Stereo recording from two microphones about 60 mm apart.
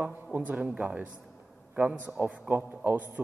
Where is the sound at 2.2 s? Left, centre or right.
Right.